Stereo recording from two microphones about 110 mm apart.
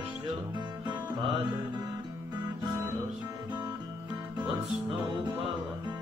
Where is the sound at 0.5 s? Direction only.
45° right (ahead or behind).